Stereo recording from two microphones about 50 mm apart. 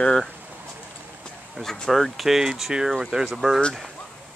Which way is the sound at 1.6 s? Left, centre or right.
Centre.